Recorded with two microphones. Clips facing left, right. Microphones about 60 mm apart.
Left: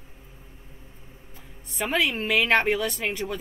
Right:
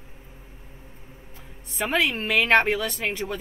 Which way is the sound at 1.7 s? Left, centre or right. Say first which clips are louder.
Right 1 dB; centre.